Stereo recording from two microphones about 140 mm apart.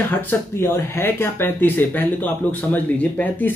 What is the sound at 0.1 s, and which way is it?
Speech, 15° left (ahead or behind).